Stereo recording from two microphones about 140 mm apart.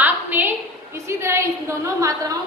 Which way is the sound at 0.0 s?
15° right (ahead or behind).